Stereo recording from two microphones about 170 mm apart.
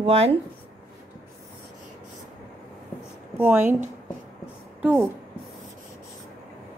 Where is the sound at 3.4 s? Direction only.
10° right (ahead or behind).